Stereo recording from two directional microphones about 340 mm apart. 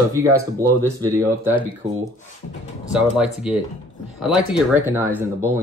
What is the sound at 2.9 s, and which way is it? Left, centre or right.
Speech, centre.